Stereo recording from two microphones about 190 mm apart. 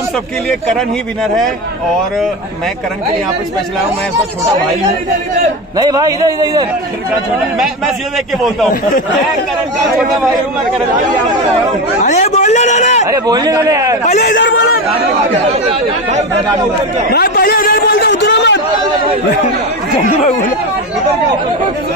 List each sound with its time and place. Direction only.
0.5 s speech: 5° left (ahead or behind)
5.8 s a man's voice: 20° right (ahead or behind)
12.0 s a man's voice: 40° left (ahead or behind)
13.1 s a man's voice: 20° right (ahead or behind)
14.2 s speech: 65° left (ahead or behind)
17.1 s a sound: 55° left (ahead or behind)
18.2 s a sound: 70° left (ahead or behind)